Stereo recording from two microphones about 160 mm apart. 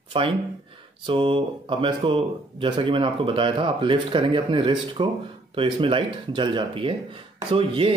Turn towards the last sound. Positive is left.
turn(degrees=-35)  # may be behind; listen again after turning